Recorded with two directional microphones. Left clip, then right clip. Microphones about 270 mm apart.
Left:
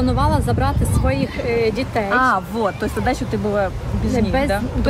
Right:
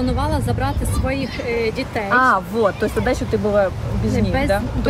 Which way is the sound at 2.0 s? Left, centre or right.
Centre.